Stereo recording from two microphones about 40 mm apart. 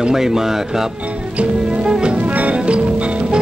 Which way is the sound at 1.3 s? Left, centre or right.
Right.